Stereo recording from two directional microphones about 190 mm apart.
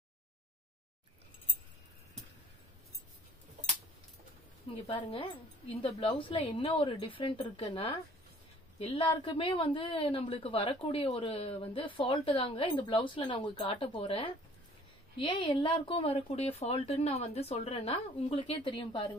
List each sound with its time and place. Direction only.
4.8 s a woman's voice: 30° left (ahead or behind)